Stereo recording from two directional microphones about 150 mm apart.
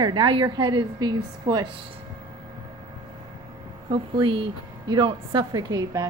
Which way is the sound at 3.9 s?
35° right (ahead or behind).